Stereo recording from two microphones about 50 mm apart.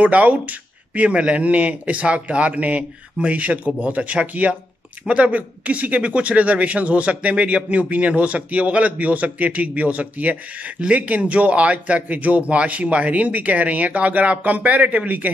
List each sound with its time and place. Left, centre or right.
0.0 s speech: right